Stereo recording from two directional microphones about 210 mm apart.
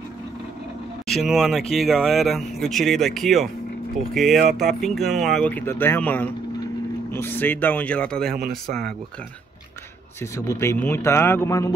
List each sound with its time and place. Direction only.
1.0 s speech: centre (ahead or behind)
8.4 s speech: 45° right (ahead or behind)
10.3 s speech: 15° left (ahead or behind)